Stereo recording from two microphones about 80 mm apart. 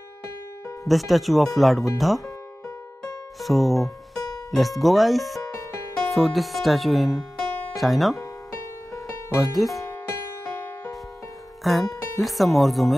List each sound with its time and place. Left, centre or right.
0.8 s speech: centre
3.3 s speech: centre
5.5 s music: left
6.0 s speech: centre
8.9 s music: centre
11.6 s speech: centre